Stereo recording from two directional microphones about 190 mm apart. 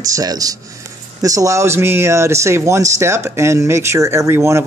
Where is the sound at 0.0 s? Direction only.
20° right (ahead or behind).